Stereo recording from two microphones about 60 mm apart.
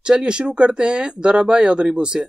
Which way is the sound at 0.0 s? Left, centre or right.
Centre.